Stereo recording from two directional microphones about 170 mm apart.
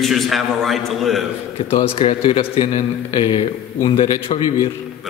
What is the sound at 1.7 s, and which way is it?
A man's voice, 35° left (ahead or behind).